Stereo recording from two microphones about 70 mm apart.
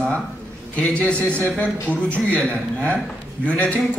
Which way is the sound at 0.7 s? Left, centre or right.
Centre.